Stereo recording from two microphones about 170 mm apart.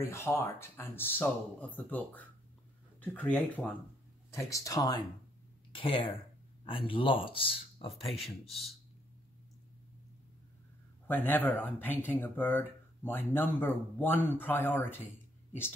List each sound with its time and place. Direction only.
0.0 s speech: 15° left (ahead or behind); by 8.1 s 35° left (ahead or behind)
8.2 s speech: centre (ahead or behind)
11.1 s speech: 10° left (ahead or behind)